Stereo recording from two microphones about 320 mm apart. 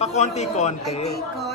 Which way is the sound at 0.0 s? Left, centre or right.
Left.